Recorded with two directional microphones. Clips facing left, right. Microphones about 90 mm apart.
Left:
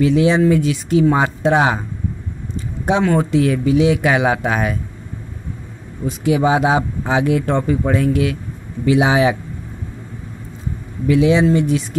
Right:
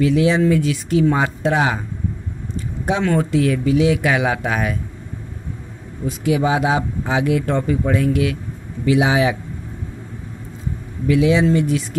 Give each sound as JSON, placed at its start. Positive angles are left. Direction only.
{"t": 0.0, "sound": "speech", "side_deg": 25}
{"t": 2.8, "sound": "speech", "side_deg": 20}
{"t": 6.2, "sound": "speech", "side_deg": 30}
{"t": 11.1, "sound": "speech", "side_deg": 30}